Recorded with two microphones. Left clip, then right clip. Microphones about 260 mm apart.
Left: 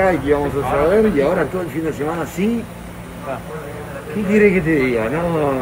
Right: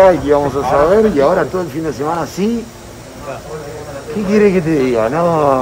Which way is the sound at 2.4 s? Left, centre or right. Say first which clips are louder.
Right 3 dB; centre.